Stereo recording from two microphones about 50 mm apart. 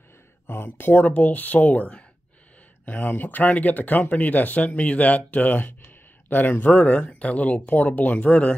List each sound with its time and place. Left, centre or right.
0.5 s speech: left